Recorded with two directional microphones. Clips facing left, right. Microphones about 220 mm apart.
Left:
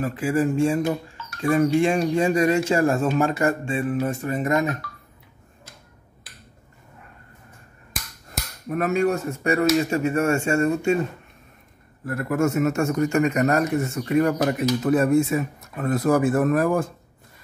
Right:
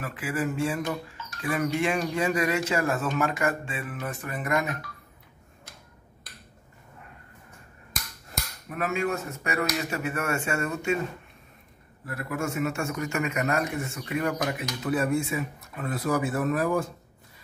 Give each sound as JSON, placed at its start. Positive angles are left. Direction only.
{"t": 0.0, "sound": "speech", "side_deg": 30}
{"t": 8.6, "sound": "speech", "side_deg": 40}
{"t": 12.1, "sound": "a man's voice", "side_deg": 45}